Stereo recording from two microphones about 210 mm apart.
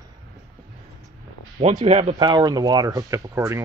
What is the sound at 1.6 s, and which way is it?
Speech, 30° right (ahead or behind).